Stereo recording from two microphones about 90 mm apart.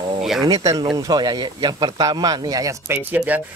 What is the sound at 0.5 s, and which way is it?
Speech, 45° right (ahead or behind).